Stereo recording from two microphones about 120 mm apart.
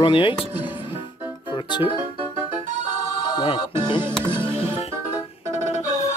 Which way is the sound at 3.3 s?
40° left (ahead or behind).